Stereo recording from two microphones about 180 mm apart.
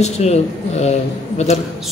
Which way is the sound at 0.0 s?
35° left (ahead or behind).